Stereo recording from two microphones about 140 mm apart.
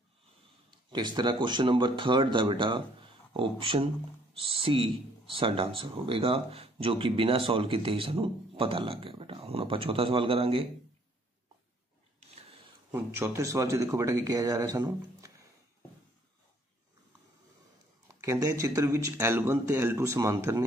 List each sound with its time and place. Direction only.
0.9 s speech: 30° right (ahead or behind)
12.9 s speech: 20° right (ahead or behind)
18.0 s speech: 20° right (ahead or behind)